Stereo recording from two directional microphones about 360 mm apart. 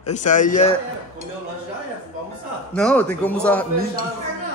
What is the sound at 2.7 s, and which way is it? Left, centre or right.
Speech, centre.